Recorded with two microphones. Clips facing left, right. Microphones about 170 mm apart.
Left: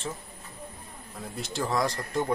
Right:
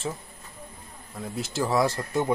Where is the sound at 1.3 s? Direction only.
5° right (ahead or behind).